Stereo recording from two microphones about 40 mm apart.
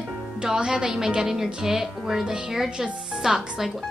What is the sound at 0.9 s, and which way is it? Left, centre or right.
Speech, centre.